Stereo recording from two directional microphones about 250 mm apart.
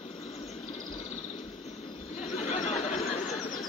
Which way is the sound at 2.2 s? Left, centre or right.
Left.